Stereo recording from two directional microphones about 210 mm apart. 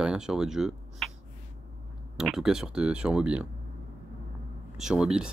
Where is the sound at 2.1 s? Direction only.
Centre (ahead or behind).